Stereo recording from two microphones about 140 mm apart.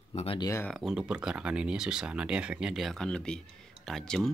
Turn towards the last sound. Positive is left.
turn(degrees=5)  # may be behind; listen again after turning